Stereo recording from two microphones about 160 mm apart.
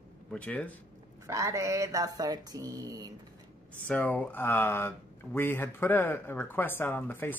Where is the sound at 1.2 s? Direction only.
20° right (ahead or behind).